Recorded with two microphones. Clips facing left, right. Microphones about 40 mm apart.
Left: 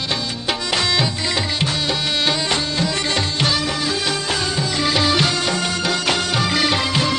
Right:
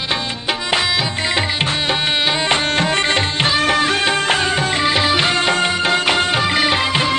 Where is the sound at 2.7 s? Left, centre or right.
Right.